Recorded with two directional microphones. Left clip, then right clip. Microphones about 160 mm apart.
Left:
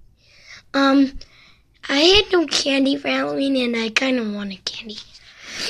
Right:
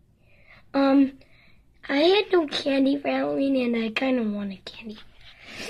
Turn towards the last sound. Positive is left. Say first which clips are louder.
# left 8 dB
turn(degrees=25)  # may be behind; listen again after turning